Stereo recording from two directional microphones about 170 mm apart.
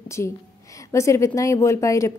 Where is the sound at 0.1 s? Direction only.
15° left (ahead or behind).